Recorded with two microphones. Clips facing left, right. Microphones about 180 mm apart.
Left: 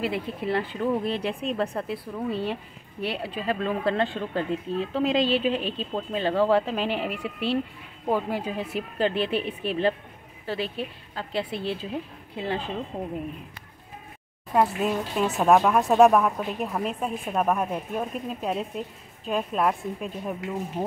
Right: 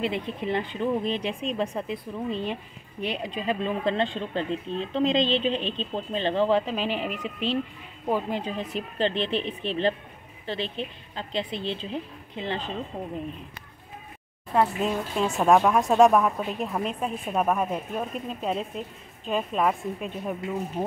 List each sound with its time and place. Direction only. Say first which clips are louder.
0.0 s speech: even; 5° left (ahead or behind)
0.5 s speech: left 1 dB; 20° right (ahead or behind)
1.0 s speech: left 1 dB; 10° left (ahead or behind)
1.6 s a woman's voice: even; 15° right (ahead or behind)
1.9 s speech: left 1 dB; 10° left (ahead or behind)
3.3 s speech: left 1 dB; 20° right (ahead or behind)
4.1 s speech: left 1 dB; 10° left (ahead or behind)
14.5 s speech: left 1 dB; 5° left (ahead or behind)